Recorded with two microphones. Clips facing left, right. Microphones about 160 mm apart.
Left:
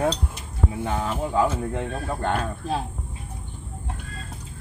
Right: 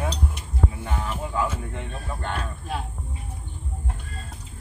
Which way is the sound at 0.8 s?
35° left (ahead or behind).